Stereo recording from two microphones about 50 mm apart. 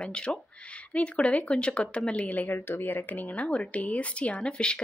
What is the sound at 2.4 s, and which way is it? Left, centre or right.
Speech, left.